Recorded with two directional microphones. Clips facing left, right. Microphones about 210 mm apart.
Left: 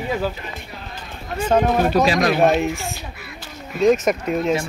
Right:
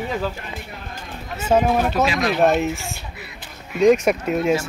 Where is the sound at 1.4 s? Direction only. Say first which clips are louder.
Left 1 dB; 10° right (ahead or behind).